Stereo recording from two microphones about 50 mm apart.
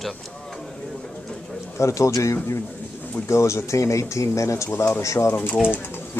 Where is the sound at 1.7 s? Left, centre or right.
Left.